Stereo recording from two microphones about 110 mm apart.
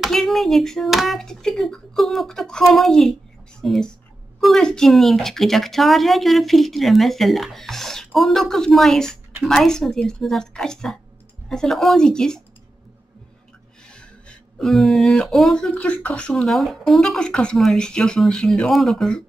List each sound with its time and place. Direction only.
0.0 s a woman's voice: centre (ahead or behind)
14.6 s a woman's voice: centre (ahead or behind)
15.7 s speech: 15° left (ahead or behind)